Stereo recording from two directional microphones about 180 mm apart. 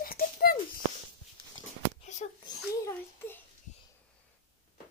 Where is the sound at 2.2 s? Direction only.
40° left (ahead or behind).